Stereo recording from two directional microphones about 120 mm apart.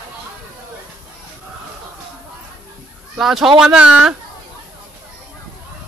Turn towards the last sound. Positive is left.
turn(degrees=-10)  # may be behind; listen again after turning